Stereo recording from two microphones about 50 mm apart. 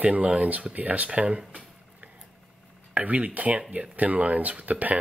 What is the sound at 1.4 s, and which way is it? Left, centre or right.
Speech, centre.